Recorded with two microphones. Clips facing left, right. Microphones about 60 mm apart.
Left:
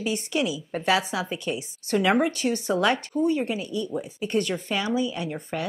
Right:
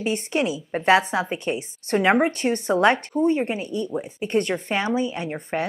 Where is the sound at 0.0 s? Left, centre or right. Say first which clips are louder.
Right 3 dB; right.